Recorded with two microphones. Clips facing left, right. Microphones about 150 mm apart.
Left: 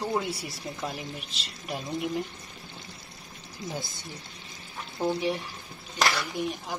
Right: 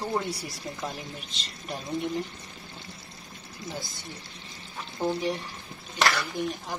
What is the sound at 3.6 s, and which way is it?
Speech, 20° left (ahead or behind).